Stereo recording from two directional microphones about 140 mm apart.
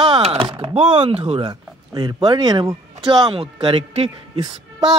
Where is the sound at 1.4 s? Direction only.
30° right (ahead or behind); by 4.1 s 45° right (ahead or behind).